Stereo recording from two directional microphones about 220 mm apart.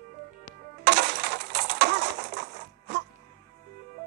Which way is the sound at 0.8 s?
45° right (ahead or behind).